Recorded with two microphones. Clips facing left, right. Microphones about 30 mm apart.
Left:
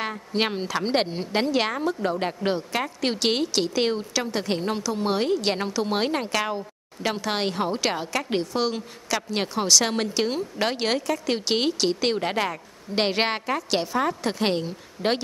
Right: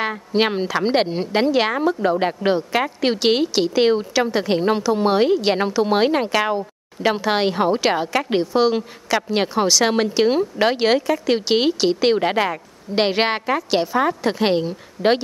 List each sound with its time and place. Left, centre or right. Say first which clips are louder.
0.0 s a woman's voice: right 6 dB; centre